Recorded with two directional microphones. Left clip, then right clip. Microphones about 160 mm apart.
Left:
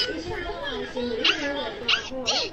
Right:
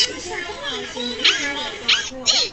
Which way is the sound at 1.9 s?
20° left (ahead or behind).